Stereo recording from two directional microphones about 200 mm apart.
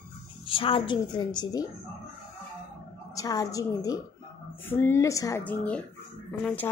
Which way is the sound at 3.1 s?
15° left (ahead or behind).